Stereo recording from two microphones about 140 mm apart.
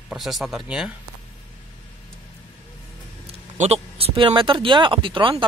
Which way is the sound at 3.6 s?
45° right (ahead or behind).